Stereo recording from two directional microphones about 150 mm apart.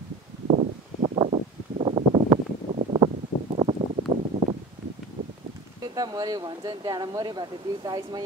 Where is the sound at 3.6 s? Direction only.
25° right (ahead or behind).